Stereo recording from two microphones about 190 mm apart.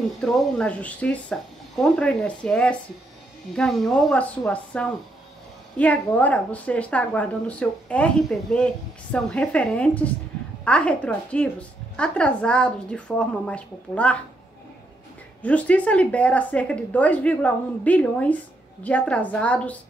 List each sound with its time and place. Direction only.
0.2 s speech: 5° left (ahead or behind)
15.4 s speech: 5° left (ahead or behind)